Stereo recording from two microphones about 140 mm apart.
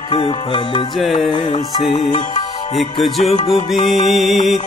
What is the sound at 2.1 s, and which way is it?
Music, 60° left (ahead or behind).